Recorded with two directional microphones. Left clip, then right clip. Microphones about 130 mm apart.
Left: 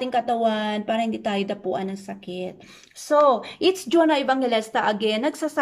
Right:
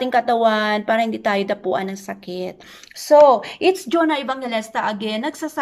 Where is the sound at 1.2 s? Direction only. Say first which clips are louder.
Right 6 dB; 15° left (ahead or behind).